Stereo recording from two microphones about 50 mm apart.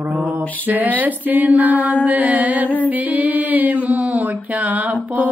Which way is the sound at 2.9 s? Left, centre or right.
Right.